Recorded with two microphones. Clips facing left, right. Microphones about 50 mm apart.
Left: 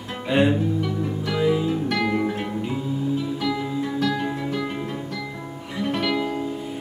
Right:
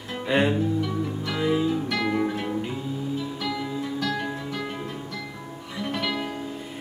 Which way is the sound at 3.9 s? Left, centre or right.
Left.